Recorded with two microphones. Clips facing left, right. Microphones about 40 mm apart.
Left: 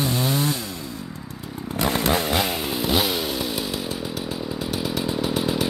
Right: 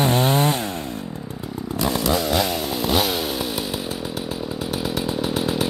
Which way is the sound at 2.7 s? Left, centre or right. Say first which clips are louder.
Right 1 dB; centre.